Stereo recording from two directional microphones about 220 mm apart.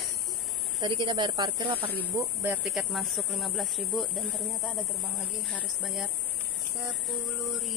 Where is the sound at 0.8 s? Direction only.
20° right (ahead or behind); by 4.4 s centre (ahead or behind).